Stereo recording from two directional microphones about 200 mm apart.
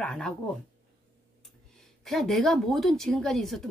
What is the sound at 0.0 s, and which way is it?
Speech, 5° left (ahead or behind).